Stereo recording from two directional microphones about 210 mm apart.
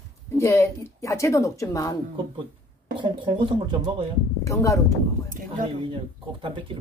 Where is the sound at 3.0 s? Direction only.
25° right (ahead or behind).